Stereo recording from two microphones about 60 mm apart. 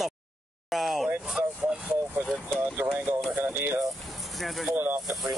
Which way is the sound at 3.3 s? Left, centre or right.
Right.